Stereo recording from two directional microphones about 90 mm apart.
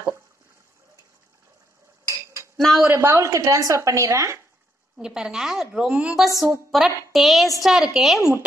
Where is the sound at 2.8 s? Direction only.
30° right (ahead or behind).